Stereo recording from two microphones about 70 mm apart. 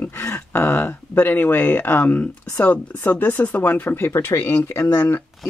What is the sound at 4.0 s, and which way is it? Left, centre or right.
Speech, left.